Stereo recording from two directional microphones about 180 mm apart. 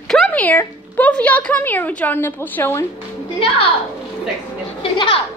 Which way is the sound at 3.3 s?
30° left (ahead or behind).